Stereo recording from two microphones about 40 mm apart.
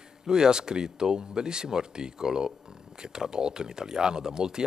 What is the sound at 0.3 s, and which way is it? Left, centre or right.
Speech, centre.